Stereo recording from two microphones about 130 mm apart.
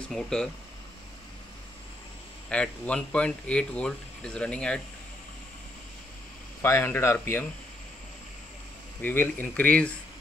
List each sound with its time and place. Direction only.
0.1 s speech: 5° left (ahead or behind)
2.5 s speech: 10° left (ahead or behind)
6.6 s speech: 15° left (ahead or behind)
9.0 s speech: 15° left (ahead or behind)